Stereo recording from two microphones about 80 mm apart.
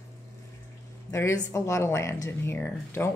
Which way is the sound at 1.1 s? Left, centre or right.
Left.